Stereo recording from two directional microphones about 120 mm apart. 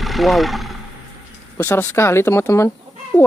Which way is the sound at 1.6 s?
20° left (ahead or behind).